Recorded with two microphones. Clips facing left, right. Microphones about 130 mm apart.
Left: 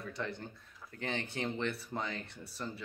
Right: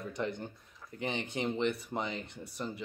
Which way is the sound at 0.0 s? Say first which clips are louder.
Right 4 dB; 20° right (ahead or behind).